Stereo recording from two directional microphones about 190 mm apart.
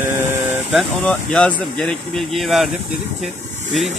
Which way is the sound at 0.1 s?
5° right (ahead or behind).